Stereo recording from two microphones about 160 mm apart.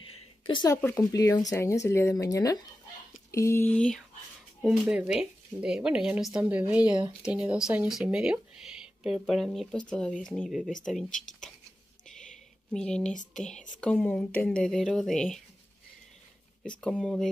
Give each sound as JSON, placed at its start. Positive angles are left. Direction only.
{"t": 0.1, "sound": "a sound", "side_deg": 30}
{"t": 0.7, "sound": "speech", "side_deg": 15}
{"t": 4.6, "sound": "speech", "side_deg": -5}
{"t": 12.7, "sound": "speech", "side_deg": 5}
{"t": 16.8, "sound": "speech", "side_deg": 5}